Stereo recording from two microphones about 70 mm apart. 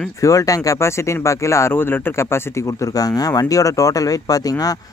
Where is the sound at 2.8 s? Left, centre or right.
Left.